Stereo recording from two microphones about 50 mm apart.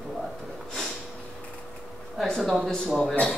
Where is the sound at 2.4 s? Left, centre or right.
Centre.